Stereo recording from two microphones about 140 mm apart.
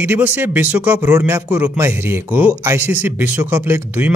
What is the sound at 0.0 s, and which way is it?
A man's voice, 10° right (ahead or behind).